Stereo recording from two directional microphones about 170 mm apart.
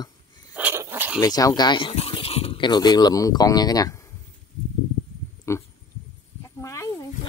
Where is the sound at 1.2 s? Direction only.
20° left (ahead or behind).